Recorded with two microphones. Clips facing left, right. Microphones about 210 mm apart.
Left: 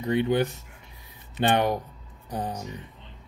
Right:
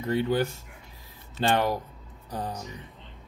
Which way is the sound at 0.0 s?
20° left (ahead or behind).